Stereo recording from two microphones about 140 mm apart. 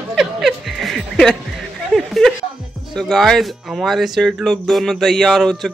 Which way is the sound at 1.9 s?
Centre (ahead or behind).